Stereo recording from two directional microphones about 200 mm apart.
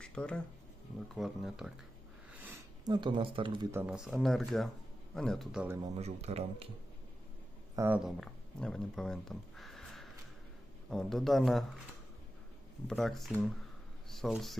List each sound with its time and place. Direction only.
0.0 s a sound: 5° left (ahead or behind)
1.1 s speech: centre (ahead or behind)
2.3 s a sound: 10° right (ahead or behind)
2.9 s speech: 25° right (ahead or behind)
3.7 s speech: 5° right (ahead or behind)
5.8 s speech: 30° right (ahead or behind)
7.7 s speech: 10° right (ahead or behind)
8.2 s speech: 5° left (ahead or behind)
12.8 s speech: centre (ahead or behind)